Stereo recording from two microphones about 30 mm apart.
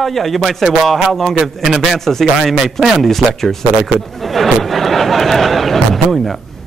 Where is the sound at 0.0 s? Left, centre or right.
Centre.